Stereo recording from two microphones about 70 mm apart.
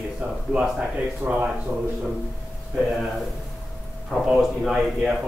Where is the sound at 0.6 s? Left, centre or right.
Centre.